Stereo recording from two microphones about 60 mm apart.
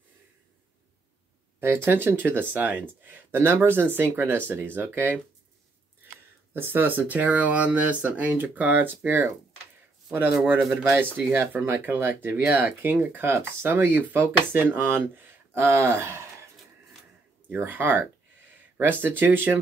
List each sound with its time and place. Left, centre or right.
1.6 s speech: right
6.5 s speech: right
11.3 s speech: right
17.5 s speech: right